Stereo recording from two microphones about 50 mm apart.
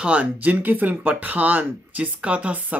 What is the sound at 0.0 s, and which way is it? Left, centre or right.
Speech, right.